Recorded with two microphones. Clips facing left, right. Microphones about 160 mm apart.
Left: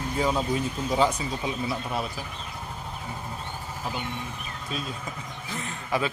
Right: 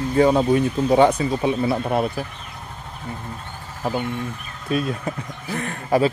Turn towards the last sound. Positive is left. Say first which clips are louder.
# right 9 dB
turn(degrees=-60)  # may be behind; listen again after turning